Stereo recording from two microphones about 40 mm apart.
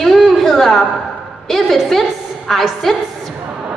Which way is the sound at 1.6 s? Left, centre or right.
Centre.